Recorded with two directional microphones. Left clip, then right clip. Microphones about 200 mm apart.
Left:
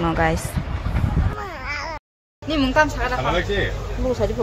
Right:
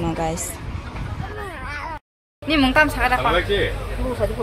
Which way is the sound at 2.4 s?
5° left (ahead or behind).